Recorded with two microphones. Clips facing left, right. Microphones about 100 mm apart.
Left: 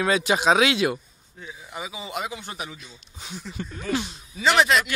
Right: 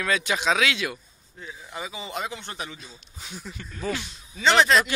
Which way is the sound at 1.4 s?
5° left (ahead or behind).